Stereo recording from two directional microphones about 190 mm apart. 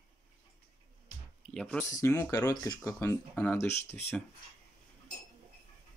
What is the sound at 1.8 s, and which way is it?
Speech, 15° left (ahead or behind).